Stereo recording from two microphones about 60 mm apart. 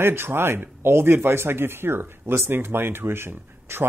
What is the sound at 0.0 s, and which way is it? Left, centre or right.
Speech, right.